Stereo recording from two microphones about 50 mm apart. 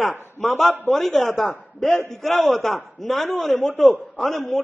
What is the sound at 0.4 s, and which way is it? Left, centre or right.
A man's voice, centre.